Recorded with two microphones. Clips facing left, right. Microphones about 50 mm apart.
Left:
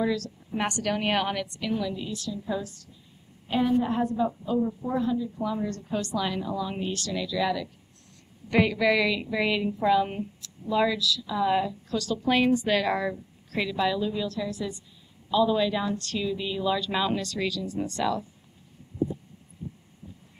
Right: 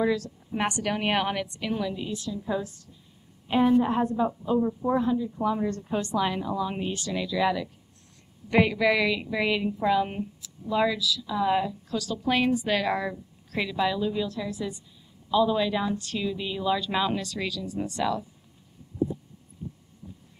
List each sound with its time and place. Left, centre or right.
0.0 s a woman's voice: centre